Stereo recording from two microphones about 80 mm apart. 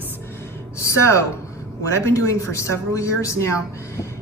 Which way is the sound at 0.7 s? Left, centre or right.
Left.